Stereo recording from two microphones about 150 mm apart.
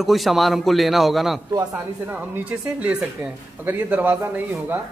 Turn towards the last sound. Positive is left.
turn(degrees=-15)  # may be behind; listen again after turning